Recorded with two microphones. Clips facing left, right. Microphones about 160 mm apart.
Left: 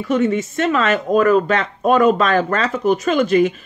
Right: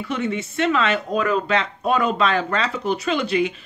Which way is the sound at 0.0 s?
40° left (ahead or behind).